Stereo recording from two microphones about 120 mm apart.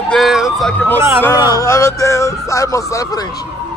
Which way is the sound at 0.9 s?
25° right (ahead or behind).